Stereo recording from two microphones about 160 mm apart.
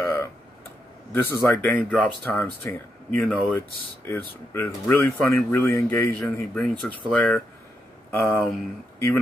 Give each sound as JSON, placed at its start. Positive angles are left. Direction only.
{"t": 0.0, "sound": "clicking", "side_deg": 15}
{"t": 1.1, "sound": "speech", "side_deg": 15}